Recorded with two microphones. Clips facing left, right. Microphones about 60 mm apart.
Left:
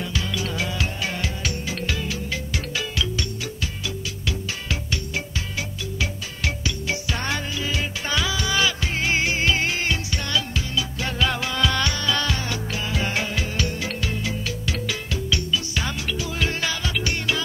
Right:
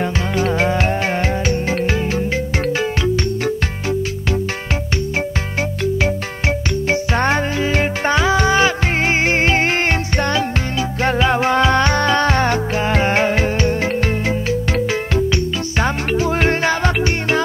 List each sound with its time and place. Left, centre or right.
0.0 s music: right
5.6 s music: right